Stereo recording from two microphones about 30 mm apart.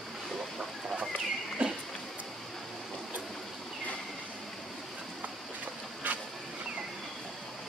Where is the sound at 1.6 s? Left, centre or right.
Right.